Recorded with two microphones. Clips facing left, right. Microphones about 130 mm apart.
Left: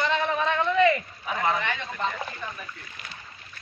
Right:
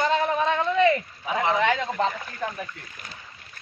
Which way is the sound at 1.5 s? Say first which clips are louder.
Right 7 dB; 90° right.